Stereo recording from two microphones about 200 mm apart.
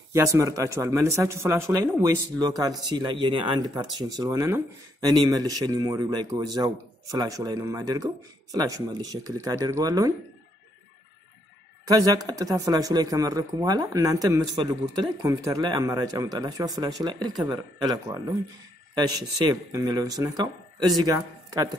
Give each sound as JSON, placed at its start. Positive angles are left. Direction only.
{"t": 0.1, "sound": "speech", "side_deg": -15}
{"t": 11.8, "sound": "speech", "side_deg": -20}